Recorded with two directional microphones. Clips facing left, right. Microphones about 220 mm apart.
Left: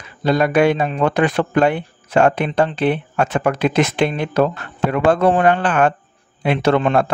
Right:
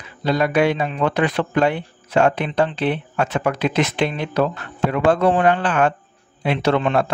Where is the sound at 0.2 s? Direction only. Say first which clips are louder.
Left 3 dB; 45° left (ahead or behind).